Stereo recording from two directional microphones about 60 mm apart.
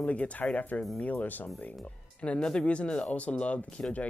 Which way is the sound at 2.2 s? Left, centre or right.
Centre.